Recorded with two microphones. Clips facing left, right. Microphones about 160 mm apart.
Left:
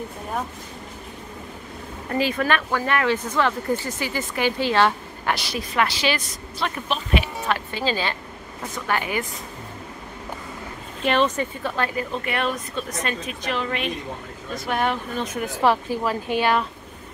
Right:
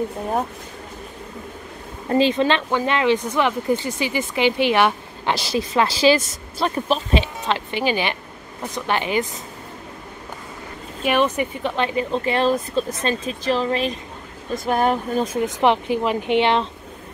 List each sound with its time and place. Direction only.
2.0 s speech: 25° right (ahead or behind)
11.1 s speech: 10° right (ahead or behind); by 13.9 s 35° right (ahead or behind)
14.5 s speech: 45° right (ahead or behind)
15.3 s speech: 20° right (ahead or behind)